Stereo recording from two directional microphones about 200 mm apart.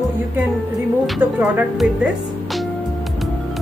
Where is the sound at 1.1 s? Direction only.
5° right (ahead or behind).